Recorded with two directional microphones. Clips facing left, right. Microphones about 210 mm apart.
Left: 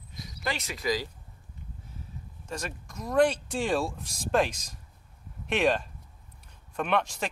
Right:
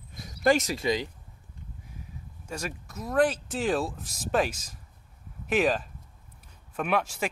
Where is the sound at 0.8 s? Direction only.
25° right (ahead or behind).